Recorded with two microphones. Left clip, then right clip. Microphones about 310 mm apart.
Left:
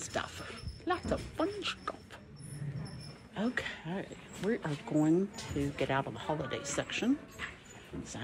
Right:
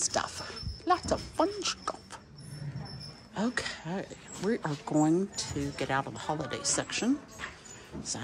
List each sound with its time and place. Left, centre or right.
0.0 s dog: centre
3.3 s speech: centre